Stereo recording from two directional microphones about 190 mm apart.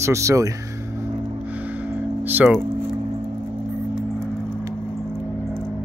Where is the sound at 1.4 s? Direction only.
10° right (ahead or behind).